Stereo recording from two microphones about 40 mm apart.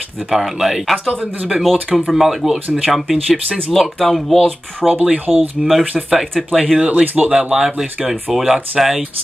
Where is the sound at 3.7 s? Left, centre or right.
Centre.